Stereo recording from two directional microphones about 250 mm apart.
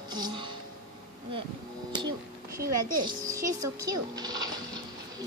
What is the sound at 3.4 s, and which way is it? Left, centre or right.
Speech, right.